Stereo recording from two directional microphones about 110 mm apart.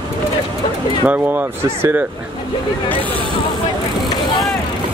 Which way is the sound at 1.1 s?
15° right (ahead or behind).